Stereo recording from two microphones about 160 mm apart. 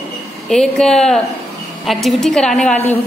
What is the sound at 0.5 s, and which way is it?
A woman's voice, 5° left (ahead or behind).